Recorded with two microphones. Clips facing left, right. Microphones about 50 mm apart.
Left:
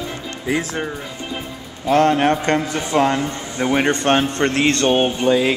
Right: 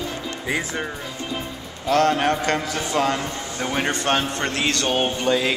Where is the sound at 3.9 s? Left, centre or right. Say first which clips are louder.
Left 5 dB; left.